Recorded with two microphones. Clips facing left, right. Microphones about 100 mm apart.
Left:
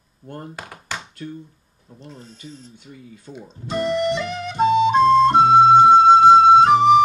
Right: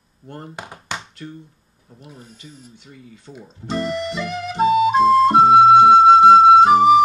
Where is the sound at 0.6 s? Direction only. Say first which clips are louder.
Right 2 dB; 20° right (ahead or behind).